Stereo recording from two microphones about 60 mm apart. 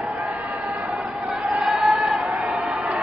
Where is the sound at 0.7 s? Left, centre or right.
Centre.